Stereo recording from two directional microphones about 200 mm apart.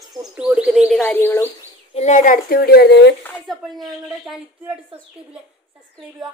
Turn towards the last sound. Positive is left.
turn(degrees=-5)  # may be behind; listen again after turning